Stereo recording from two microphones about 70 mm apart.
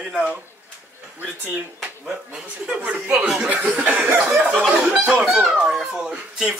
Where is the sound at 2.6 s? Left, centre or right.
Centre.